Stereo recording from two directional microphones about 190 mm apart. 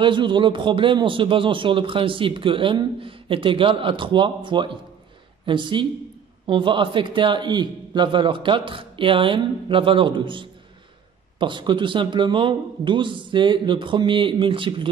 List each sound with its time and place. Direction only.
0.0 s a man's voice: 25° right (ahead or behind)